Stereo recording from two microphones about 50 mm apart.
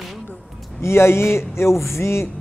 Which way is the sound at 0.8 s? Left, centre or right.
Left.